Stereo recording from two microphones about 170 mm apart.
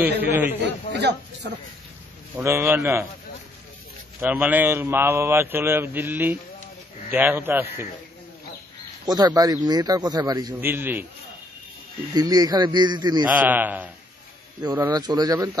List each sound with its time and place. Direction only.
0.6 s speech: 85° right
2.3 s a man's voice: 15° right (ahead or behind)
4.2 s a man's voice: 10° right (ahead or behind)
9.0 s a man's voice: 25° right (ahead or behind)
12.1 s a man's voice: 25° right (ahead or behind)
13.3 s a man's voice: 10° right (ahead or behind)
14.8 s a man's voice: 25° right (ahead or behind)